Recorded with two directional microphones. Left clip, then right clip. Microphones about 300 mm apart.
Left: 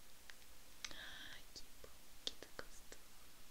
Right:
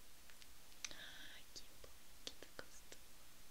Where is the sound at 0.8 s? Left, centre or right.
Centre.